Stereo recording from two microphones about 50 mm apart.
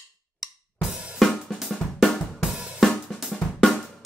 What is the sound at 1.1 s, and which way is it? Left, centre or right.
Drum kit, centre.